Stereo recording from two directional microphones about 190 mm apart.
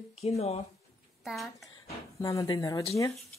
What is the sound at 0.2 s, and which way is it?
Speech, 35° left (ahead or behind).